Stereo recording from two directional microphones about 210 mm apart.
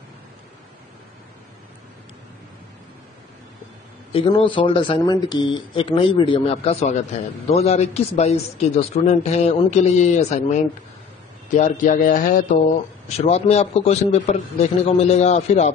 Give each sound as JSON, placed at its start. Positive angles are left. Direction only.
{"t": 4.1, "sound": "a man's voice", "side_deg": 25}